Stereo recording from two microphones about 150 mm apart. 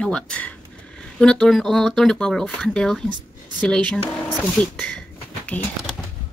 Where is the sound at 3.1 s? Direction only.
30° right (ahead or behind).